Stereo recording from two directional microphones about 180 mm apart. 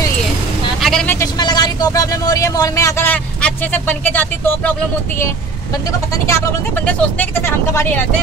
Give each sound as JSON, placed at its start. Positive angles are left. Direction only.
{"t": 0.7, "sound": "vehicle", "side_deg": 0}
{"t": 1.0, "sound": "vehicle", "side_deg": 20}
{"t": 6.2, "sound": "speech", "side_deg": 15}